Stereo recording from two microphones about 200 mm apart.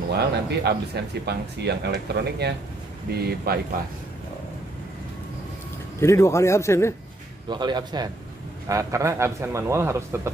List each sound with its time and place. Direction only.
0.1 s speech: 55° right (ahead or behind)
5.9 s a man's voice: 15° left (ahead or behind)
7.4 s a man's voice: 20° right (ahead or behind)